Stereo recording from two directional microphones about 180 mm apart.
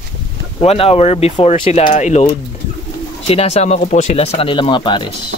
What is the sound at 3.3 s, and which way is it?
Speech, 35° left (ahead or behind).